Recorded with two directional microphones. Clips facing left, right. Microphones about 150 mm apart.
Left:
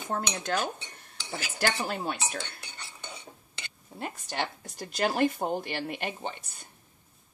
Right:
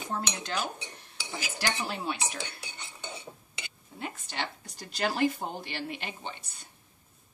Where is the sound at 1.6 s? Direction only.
50° left (ahead or behind).